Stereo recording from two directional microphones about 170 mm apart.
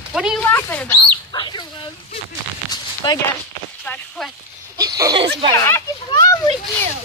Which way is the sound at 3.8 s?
5° left (ahead or behind).